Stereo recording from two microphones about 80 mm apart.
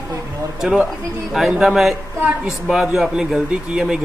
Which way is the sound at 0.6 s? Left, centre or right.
Centre.